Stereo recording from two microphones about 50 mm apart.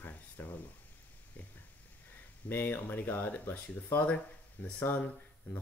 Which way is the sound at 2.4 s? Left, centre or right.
Left.